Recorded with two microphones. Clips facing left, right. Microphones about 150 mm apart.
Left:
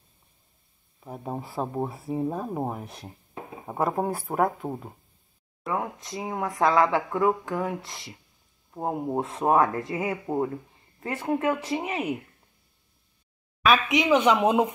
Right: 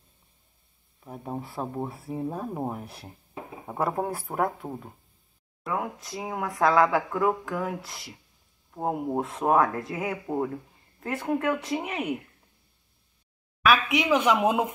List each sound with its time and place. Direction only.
1.0 s speech: 15° left (ahead or behind)
1.4 s speech: centre (ahead or behind)
2.8 s speech: 5° right (ahead or behind)
4.6 s speech: 30° left (ahead or behind)
5.6 s speech: centre (ahead or behind)
10.2 s speech: 10° left (ahead or behind)
13.7 s speech: 5° right (ahead or behind)